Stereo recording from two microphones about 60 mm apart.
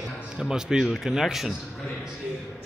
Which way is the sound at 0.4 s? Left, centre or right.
Centre.